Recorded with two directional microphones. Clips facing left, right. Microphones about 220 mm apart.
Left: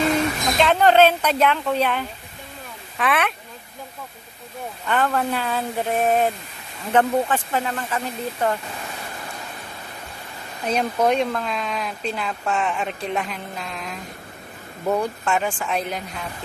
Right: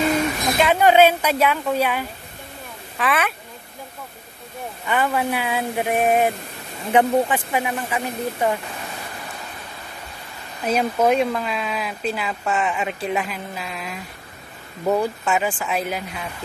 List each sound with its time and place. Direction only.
0.6 s speech: 10° right (ahead or behind)
4.8 s speech: 10° right (ahead or behind)
10.7 s speech: 5° right (ahead or behind)